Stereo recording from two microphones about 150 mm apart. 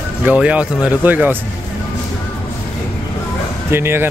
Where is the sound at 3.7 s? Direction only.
15° right (ahead or behind).